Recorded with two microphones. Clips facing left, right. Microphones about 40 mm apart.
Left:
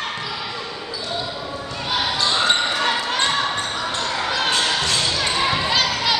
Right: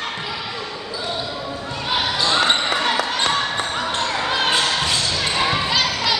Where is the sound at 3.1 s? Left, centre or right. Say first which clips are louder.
Even; centre.